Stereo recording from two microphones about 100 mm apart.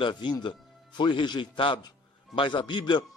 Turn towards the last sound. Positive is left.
turn(degrees=50)  # may be behind; listen again after turning